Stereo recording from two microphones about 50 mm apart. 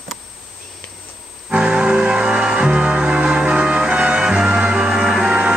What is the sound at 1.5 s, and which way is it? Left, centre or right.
Music, right.